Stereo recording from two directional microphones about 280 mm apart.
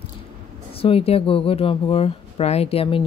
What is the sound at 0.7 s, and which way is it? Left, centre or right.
Speech, centre.